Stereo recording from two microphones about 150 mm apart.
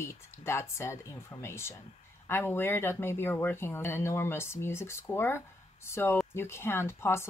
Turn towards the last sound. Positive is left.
turn(degrees=15)  # may be behind; listen again after turning